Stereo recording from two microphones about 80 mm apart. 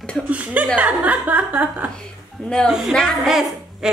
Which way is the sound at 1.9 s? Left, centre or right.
Centre.